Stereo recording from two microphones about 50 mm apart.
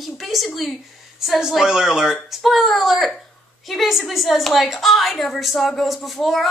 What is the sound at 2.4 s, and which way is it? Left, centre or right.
A woman's voice, centre.